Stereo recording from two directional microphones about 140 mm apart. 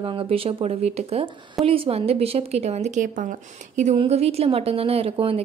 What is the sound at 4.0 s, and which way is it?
A woman's voice, 45° right (ahead or behind).